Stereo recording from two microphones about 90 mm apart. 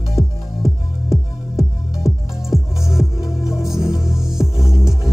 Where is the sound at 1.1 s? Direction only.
35° left (ahead or behind).